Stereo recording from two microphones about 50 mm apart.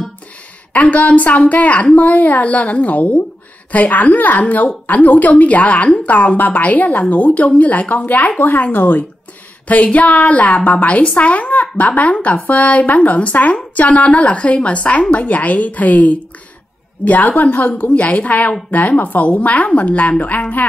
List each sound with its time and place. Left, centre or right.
0.7 s a woman's voice: left